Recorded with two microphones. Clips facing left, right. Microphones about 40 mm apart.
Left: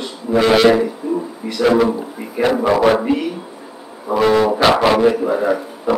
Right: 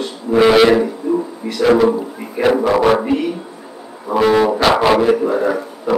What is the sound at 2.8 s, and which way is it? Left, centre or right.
Music, centre.